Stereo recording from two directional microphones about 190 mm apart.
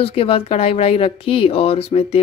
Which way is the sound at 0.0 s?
30° left (ahead or behind).